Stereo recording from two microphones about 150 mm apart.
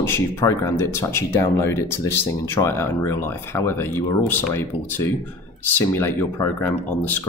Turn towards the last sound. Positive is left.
turn(degrees=15)  # may be behind; listen again after turning